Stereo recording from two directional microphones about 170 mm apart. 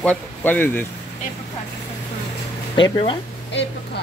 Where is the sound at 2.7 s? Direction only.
30° left (ahead or behind).